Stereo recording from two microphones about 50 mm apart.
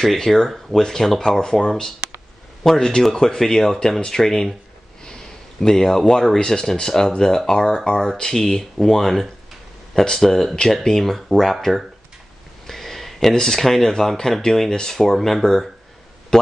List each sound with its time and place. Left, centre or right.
0.0 s speech: centre
12.6 s speech: centre